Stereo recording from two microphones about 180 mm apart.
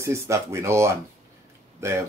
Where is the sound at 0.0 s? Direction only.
15° right (ahead or behind).